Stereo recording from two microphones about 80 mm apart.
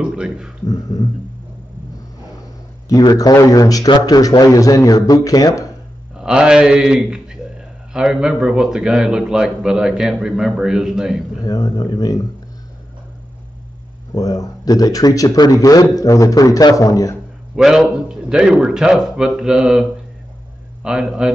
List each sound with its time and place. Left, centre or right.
0.0 s a man's voice: centre
0.7 s speech: left
2.9 s speech: left
6.1 s a man's voice: centre
11.4 s speech: left
14.1 s speech: left
17.6 s a man's voice: centre